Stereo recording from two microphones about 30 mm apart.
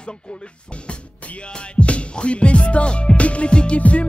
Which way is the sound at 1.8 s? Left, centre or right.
Left.